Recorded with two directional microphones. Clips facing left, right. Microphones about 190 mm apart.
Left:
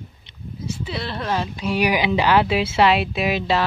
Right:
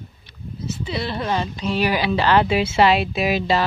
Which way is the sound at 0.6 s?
10° left (ahead or behind).